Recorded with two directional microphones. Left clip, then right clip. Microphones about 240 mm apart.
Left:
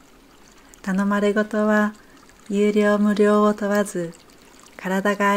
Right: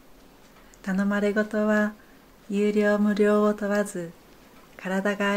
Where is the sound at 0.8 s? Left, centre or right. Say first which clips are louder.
Left 5 dB; left.